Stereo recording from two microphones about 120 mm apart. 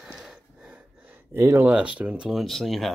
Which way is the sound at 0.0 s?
5° right (ahead or behind).